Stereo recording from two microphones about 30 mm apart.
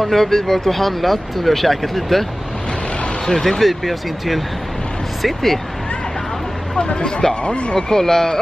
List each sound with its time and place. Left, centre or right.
0.0 s speech: centre
3.3 s speech: centre
3.6 s speech: centre
6.8 s speech: left
7.4 s speech: left
7.7 s speech: centre